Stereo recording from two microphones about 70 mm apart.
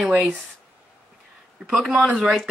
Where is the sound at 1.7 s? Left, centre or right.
Centre.